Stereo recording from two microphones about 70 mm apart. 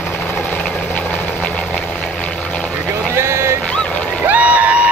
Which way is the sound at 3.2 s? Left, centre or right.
Right.